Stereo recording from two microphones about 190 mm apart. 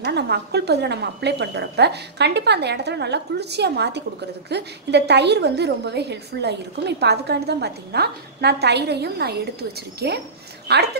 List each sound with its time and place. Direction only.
0.0 s a woman's voice: 60° right (ahead or behind)